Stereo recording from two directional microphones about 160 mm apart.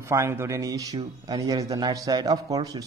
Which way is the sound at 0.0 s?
15° right (ahead or behind).